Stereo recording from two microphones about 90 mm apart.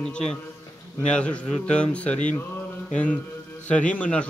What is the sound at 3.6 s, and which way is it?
Speech, 15° left (ahead or behind).